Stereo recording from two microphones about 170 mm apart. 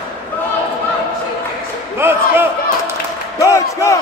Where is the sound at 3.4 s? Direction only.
20° left (ahead or behind).